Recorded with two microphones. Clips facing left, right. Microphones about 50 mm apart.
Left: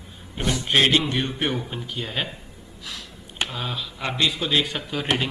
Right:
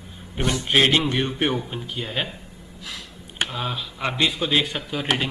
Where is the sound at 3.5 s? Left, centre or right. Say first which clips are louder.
Right 2 dB; centre.